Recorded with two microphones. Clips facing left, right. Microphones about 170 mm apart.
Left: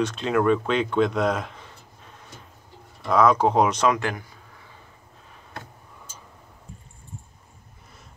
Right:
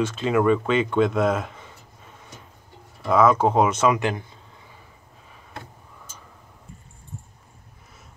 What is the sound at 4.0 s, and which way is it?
Speech, 25° right (ahead or behind).